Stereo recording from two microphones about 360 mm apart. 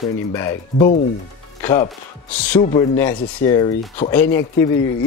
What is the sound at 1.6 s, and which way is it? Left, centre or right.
Music, centre.